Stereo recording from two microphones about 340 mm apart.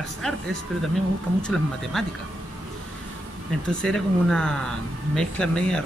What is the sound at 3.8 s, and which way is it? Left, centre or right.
Speech, centre.